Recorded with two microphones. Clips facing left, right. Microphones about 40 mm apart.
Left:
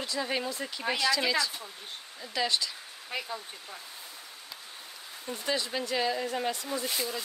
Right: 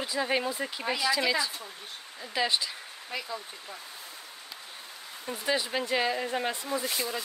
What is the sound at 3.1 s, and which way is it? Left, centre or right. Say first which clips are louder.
Speech: left 1 dB; centre.